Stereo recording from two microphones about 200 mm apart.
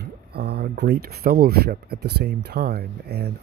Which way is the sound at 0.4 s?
55° right (ahead or behind).